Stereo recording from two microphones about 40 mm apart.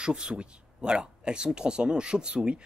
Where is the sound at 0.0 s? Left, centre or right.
Right.